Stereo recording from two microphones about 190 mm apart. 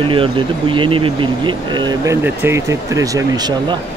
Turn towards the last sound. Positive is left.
turn(degrees=-20)  # may be behind; listen again after turning